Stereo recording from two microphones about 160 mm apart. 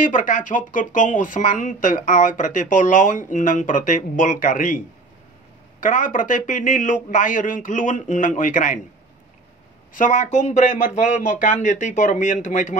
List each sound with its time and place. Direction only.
0.0 s speech: 60° left (ahead or behind)
9.9 s speech: 55° left (ahead or behind)